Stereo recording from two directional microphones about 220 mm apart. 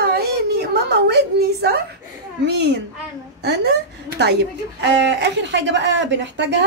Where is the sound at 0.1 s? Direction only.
45° right (ahead or behind).